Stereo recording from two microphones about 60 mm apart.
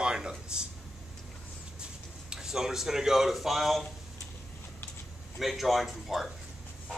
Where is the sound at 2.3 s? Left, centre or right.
Centre.